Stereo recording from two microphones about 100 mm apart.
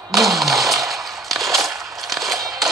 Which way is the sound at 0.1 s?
Centre (ahead or behind).